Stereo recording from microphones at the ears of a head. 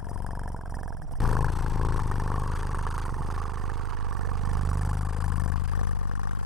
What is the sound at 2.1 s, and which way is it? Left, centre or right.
Vehicle, centre.